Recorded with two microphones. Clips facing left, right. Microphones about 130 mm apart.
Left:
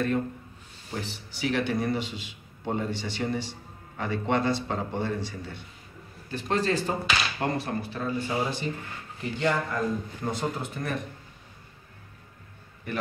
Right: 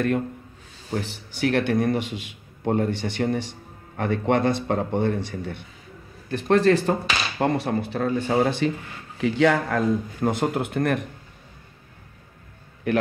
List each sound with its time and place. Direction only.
0.9 s a man's voice: 60° right (ahead or behind)
9.2 s a man's voice: 85° right; by 11.1 s 65° right (ahead or behind)